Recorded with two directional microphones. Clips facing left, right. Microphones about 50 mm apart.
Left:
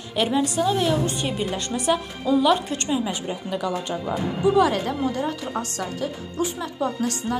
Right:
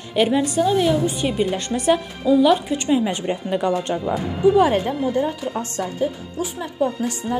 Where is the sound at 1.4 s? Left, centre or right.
Right.